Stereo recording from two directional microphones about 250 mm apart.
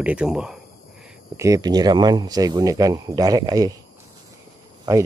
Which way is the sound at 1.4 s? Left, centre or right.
Centre.